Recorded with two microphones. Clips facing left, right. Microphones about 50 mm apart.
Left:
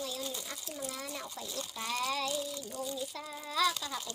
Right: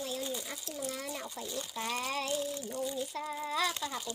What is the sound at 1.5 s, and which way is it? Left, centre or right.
Speech, centre.